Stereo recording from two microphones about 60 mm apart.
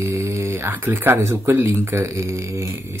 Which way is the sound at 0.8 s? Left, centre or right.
Right.